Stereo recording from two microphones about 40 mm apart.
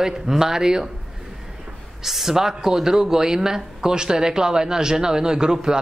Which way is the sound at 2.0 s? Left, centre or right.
Centre.